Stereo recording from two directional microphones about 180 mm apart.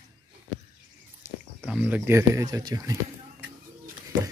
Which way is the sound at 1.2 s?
15° right (ahead or behind).